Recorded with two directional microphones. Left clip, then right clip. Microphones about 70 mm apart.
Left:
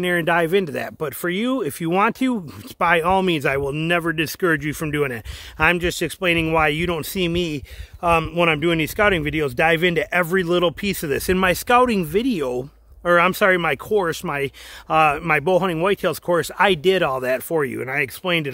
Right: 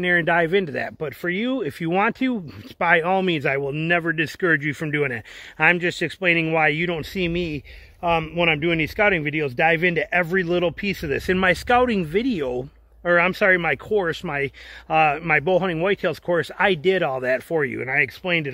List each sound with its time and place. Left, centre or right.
0.0 s speech: left
0.9 s speech: left
7.4 s speech: left
13.1 s speech: left
18.0 s speech: left